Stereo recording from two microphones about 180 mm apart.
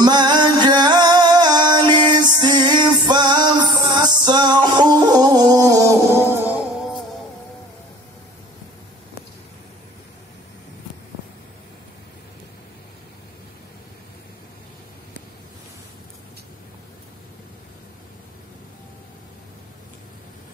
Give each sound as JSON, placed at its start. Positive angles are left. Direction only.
{"t": 0.0, "sound": "music", "side_deg": -25}